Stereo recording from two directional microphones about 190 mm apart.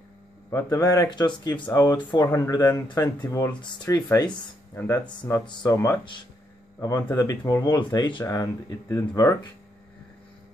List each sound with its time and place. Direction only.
0.5 s speech: 15° left (ahead or behind)